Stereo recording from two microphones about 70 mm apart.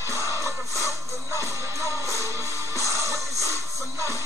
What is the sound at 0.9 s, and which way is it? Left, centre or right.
Music, right.